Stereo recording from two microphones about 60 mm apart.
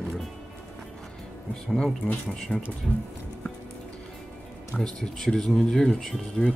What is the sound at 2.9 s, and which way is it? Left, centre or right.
Music, left.